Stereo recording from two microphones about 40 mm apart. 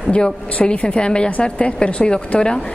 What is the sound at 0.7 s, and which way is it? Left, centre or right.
A woman's voice, left.